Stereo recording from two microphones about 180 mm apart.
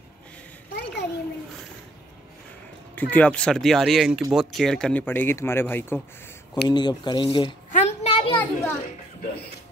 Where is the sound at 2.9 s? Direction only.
10° left (ahead or behind).